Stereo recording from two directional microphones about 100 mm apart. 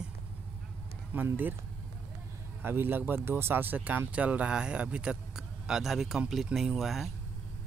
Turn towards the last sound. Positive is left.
turn(degrees=0)  # may be behind; listen again after turning